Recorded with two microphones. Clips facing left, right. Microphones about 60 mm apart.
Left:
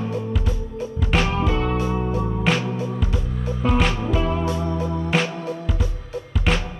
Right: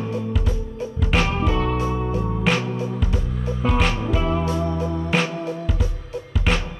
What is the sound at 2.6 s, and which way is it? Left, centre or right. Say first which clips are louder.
Music: even; right.